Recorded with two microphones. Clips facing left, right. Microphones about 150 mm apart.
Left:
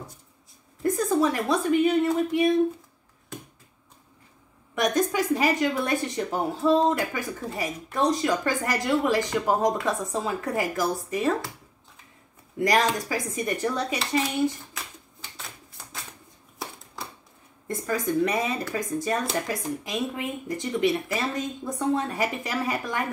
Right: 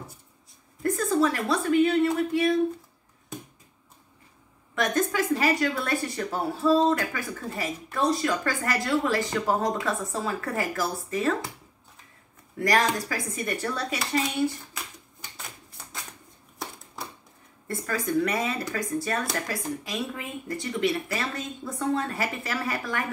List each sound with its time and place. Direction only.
0.8 s speech: 15° left (ahead or behind)
4.7 s speech: 15° left (ahead or behind)
12.5 s speech: 20° left (ahead or behind)
17.6 s speech: 20° left (ahead or behind)